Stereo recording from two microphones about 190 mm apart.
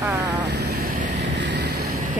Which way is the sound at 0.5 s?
60° right (ahead or behind).